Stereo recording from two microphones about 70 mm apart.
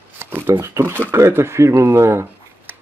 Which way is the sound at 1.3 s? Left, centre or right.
Right.